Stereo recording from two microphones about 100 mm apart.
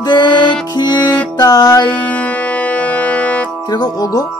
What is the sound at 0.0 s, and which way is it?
Music, 50° left (ahead or behind).